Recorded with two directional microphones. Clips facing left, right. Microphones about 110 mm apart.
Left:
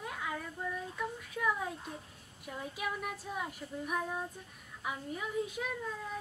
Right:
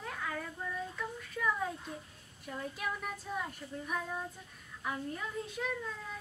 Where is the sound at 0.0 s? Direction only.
10° left (ahead or behind).